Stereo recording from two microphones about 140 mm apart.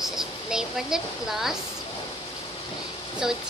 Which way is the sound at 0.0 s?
5° right (ahead or behind).